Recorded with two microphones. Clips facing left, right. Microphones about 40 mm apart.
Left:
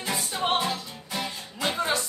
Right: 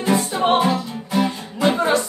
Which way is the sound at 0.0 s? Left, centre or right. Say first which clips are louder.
Right 10 dB; centre.